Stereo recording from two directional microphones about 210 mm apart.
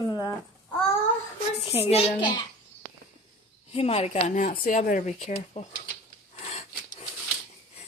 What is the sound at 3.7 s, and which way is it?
Speech, 30° left (ahead or behind).